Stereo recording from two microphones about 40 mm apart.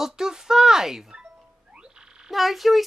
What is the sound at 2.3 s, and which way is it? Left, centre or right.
Speech, centre.